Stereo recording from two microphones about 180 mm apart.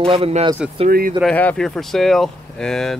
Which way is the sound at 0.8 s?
50° right (ahead or behind).